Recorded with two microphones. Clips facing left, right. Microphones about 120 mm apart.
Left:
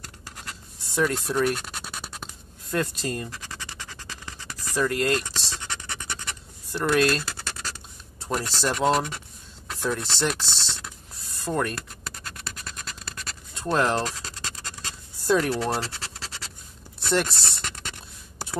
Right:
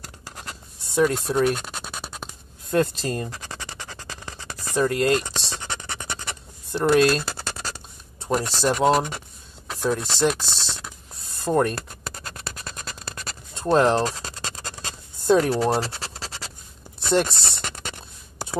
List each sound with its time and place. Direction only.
0.0 s writing: 30° right (ahead or behind)
0.9 s scratch: 15° right (ahead or behind)
2.7 s speech: 30° right (ahead or behind)
3.6 s scratch: 55° right (ahead or behind)
4.3 s scratch: 25° right (ahead or behind)
5.7 s scratch: 40° right (ahead or behind)
6.7 s scratch: 25° right (ahead or behind)
8.2 s speech: 15° right (ahead or behind)
11.4 s speech: 30° right (ahead or behind)
12.6 s a sound: 40° right (ahead or behind)
13.6 s scratch: 25° right (ahead or behind)
17.0 s a sound: 20° right (ahead or behind)